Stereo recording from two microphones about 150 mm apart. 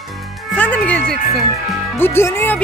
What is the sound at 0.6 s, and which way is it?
Music, 10° left (ahead or behind).